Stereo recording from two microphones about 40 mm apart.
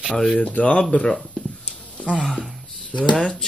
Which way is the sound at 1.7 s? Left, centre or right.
Left.